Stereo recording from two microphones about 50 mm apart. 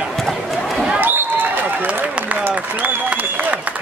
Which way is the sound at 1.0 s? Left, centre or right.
Right.